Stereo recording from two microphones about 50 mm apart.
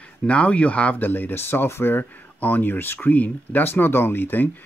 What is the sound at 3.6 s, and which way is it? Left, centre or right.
Speech, left.